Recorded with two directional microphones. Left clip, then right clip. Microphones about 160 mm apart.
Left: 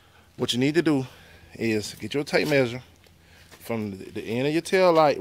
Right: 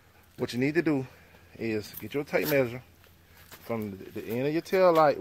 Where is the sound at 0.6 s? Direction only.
20° left (ahead or behind).